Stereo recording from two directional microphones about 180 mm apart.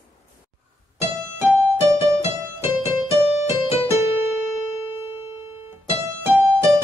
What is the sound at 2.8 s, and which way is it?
Keyboard, 15° right (ahead or behind).